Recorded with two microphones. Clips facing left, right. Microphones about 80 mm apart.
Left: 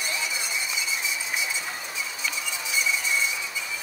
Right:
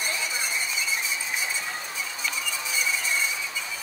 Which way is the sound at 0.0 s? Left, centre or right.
Right.